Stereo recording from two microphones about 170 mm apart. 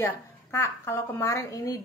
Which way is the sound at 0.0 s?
15° left (ahead or behind).